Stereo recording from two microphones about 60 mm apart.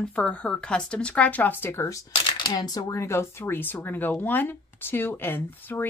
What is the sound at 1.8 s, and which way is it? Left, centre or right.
Speech, left.